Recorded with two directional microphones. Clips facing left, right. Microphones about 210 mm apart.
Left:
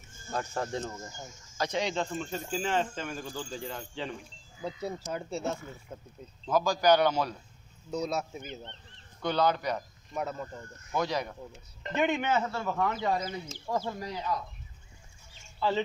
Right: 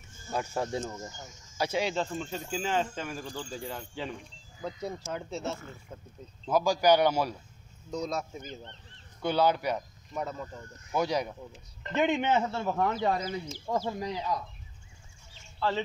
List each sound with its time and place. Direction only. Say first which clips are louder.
0.3 s a man's voice: right 2 dB; 10° right (ahead or behind)
4.6 s speech: even; 10° left (ahead or behind)
6.4 s a man's voice: right 1 dB; 10° right (ahead or behind)
7.9 s speech: left 1 dB; 5° left (ahead or behind)
9.2 s a man's voice: right 1 dB; 10° right (ahead or behind)
10.1 s speech: left 1 dB; 5° left (ahead or behind)
10.9 s a man's voice: right 2 dB; 10° right (ahead or behind)
12.1 s a man's voice: right 2 dB; 20° right (ahead or behind)